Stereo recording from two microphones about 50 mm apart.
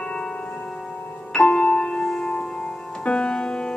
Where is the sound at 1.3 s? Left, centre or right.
Left.